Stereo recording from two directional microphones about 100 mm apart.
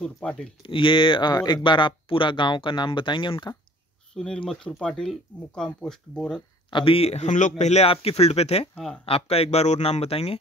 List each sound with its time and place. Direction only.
0.0 s speech: 10° left (ahead or behind)
0.6 s speech: 60° left (ahead or behind)
4.1 s speech: 10° left (ahead or behind)
6.7 s speech: 65° left (ahead or behind); by 8.6 s 90° left
9.0 s speech: 80° left